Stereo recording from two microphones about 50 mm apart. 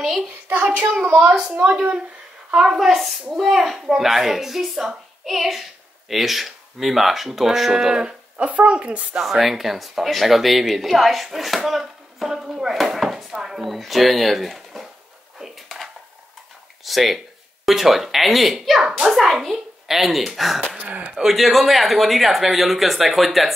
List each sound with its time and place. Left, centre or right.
0.0 s a sound: centre
1.6 s speech: centre
8.5 s speech: right
9.2 s speech: centre
15.3 s a sound: centre
16.8 s speech: centre
18.8 s speech: centre
19.0 s speech: centre
20.6 s speech: right
21.2 s speech: centre